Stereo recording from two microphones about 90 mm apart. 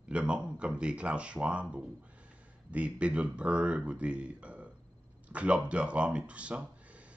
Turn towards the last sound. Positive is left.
turn(degrees=-15)  # may be behind; listen again after turning